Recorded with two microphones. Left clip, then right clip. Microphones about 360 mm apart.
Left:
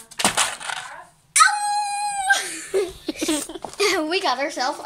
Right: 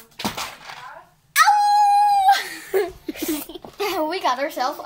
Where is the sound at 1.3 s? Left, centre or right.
Centre.